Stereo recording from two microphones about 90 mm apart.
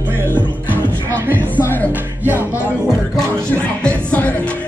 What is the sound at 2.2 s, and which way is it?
Music, 25° left (ahead or behind).